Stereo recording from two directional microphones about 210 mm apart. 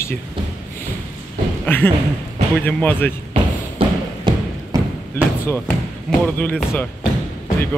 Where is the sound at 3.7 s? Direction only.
25° right (ahead or behind).